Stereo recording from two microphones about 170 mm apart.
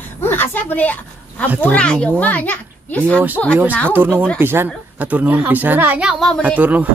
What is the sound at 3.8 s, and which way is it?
Speech, 10° right (ahead or behind).